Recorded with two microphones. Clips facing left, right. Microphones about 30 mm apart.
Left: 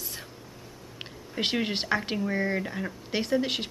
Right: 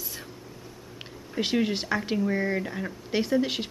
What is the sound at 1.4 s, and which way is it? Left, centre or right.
Speech, centre.